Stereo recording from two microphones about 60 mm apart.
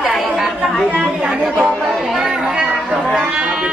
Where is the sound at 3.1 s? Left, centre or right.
Centre.